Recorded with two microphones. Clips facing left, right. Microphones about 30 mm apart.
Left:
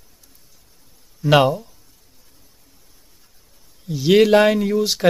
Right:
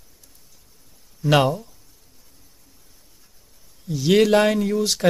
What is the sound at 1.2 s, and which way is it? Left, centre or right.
Speech, centre.